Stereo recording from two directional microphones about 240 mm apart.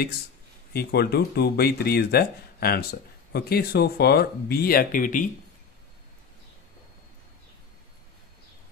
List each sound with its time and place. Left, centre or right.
0.7 s speech: left